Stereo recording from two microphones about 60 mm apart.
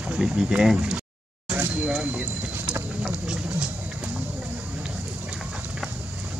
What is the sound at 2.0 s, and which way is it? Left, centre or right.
Speech, right.